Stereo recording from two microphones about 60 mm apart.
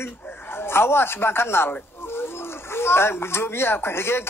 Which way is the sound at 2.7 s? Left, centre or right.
Left.